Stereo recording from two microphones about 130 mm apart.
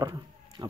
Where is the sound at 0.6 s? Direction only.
35° right (ahead or behind).